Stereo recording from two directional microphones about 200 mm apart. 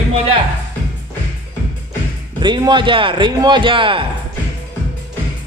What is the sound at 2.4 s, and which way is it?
A man's voice, 25° right (ahead or behind).